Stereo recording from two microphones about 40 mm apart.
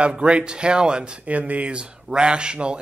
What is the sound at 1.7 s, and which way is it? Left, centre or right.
Speech, right.